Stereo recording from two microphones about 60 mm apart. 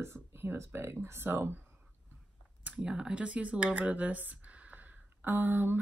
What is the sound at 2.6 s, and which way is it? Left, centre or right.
Speech, centre.